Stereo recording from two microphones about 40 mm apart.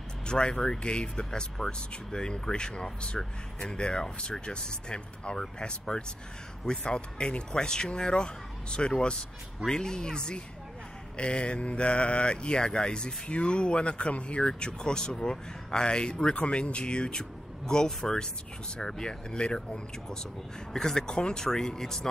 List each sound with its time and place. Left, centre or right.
0.3 s speech: left